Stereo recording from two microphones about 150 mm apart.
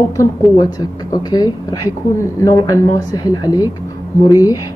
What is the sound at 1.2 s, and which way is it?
A woman's voice, 25° left (ahead or behind).